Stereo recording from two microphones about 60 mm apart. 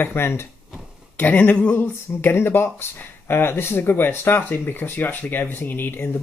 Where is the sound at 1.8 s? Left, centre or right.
Left.